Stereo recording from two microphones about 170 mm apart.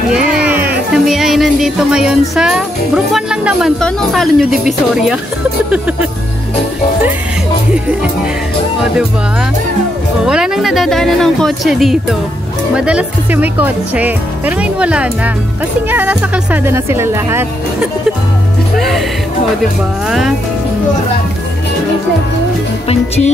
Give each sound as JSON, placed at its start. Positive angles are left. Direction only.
{"t": 0.1, "sound": "music", "side_deg": -5}
{"t": 0.9, "sound": "speech", "side_deg": 0}
{"t": 10.2, "sound": "speech", "side_deg": -5}
{"t": 18.8, "sound": "speech", "side_deg": 0}
{"t": 20.1, "sound": "speech", "side_deg": 0}
{"t": 22.8, "sound": "music", "side_deg": 35}